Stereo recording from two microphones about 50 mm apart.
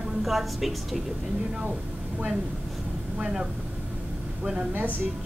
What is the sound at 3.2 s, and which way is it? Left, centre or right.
Speech, centre.